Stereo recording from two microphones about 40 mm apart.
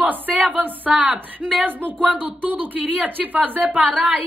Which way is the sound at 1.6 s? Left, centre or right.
Right.